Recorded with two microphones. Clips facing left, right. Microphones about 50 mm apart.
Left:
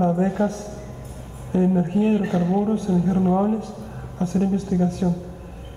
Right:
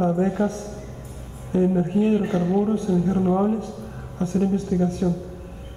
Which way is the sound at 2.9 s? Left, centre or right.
Left.